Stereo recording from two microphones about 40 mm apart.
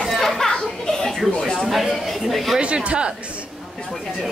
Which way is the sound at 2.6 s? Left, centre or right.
Right.